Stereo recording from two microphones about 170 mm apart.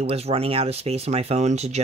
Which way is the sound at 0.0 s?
35° right (ahead or behind).